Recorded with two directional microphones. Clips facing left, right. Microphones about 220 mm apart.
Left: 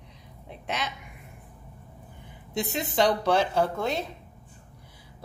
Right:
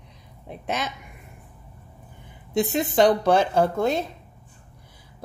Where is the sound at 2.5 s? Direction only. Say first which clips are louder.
Right 7 dB; 50° right (ahead or behind).